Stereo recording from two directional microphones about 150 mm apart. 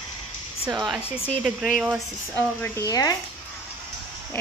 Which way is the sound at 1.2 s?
5° right (ahead or behind).